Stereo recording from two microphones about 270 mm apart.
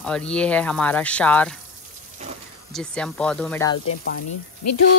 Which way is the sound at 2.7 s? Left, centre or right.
Centre.